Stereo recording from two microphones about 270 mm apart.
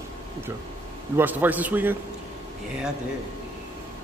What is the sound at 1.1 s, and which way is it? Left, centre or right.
Speech, centre.